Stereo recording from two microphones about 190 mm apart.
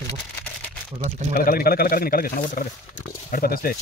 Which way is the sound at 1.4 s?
50° left (ahead or behind).